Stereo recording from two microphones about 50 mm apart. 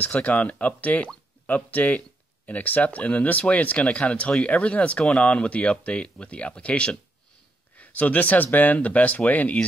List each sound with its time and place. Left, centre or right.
0.0 s speech: left